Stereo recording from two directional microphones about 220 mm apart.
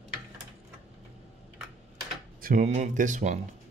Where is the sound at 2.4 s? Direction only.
35° right (ahead or behind).